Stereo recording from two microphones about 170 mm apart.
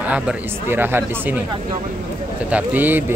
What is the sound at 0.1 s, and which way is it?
Speech, 10° right (ahead or behind).